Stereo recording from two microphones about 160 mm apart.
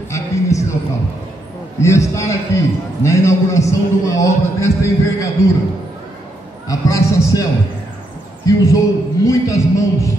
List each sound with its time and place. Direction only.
0.1 s a sound: 20° left (ahead or behind)
1.8 s a man's voice: 20° left (ahead or behind)
6.7 s a man's voice: 20° left (ahead or behind)
8.7 s a man's voice: 20° left (ahead or behind)